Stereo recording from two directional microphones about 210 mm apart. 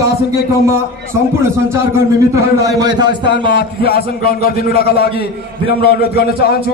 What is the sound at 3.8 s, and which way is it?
A man's voice, 45° left (ahead or behind).